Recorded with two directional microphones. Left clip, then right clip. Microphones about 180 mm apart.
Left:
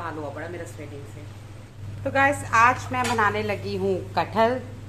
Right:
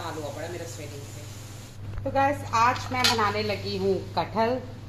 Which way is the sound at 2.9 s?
35° left (ahead or behind).